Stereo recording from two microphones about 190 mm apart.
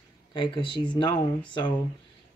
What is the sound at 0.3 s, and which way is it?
Speech, 25° left (ahead or behind).